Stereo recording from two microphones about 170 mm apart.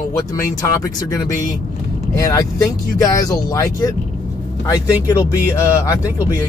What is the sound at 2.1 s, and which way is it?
Speech, 20° left (ahead or behind).